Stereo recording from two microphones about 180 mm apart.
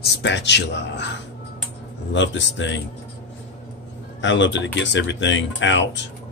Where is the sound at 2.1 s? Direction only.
90° left.